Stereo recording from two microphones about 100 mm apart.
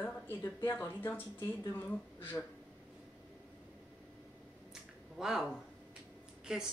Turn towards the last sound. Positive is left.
turn(degrees=-10)  # may be behind; listen again after turning